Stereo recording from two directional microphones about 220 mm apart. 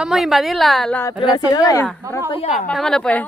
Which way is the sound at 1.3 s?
15° left (ahead or behind).